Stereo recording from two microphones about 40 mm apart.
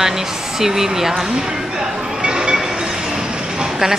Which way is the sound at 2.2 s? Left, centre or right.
Right.